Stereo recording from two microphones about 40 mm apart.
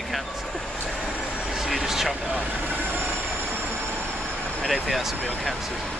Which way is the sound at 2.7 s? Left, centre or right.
Right.